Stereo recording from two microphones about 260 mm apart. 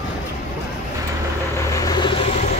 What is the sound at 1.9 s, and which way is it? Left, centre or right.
Vehicle, centre.